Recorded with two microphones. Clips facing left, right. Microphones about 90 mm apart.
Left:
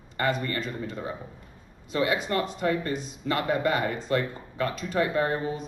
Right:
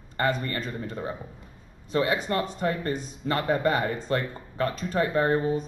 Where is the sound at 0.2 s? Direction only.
35° right (ahead or behind).